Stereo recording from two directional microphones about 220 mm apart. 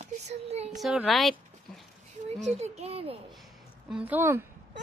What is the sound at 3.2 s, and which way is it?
A woman's voice, centre (ahead or behind).